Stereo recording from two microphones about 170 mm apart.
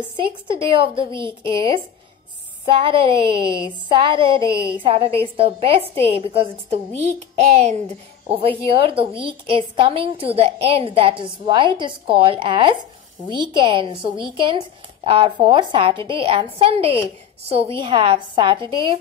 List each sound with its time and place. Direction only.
0.2 s a woman's voice: 30° right (ahead or behind)